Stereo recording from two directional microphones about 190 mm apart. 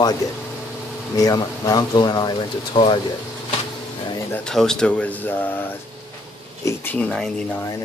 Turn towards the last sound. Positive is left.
turn(degrees=5)  # may be behind; listen again after turning